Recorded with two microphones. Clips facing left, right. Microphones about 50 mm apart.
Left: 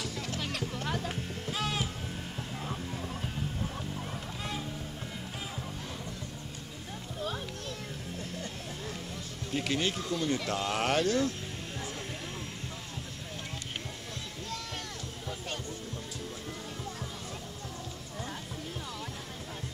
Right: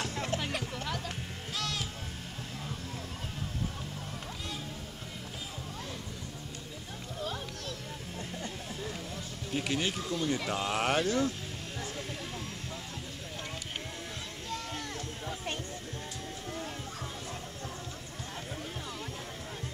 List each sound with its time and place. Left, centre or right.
0.0 s music: right
0.4 s music: centre
0.8 s music: centre
9.5 s speech: centre